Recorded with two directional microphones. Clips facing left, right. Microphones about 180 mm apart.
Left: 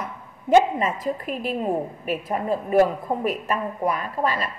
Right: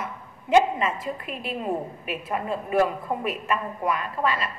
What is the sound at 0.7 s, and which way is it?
A woman's voice, 40° left (ahead or behind).